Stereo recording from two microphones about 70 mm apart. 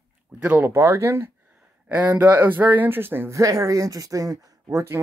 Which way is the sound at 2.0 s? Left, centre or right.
Right.